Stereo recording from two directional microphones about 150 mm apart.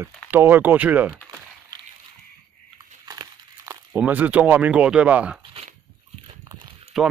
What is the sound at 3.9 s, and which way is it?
Speech, 10° right (ahead or behind).